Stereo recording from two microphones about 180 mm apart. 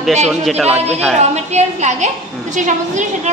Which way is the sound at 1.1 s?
40° right (ahead or behind).